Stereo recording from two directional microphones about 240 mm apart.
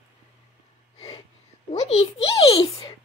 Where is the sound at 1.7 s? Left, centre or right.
Left.